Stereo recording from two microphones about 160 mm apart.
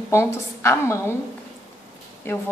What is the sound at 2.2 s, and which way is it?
Speech, 15° left (ahead or behind).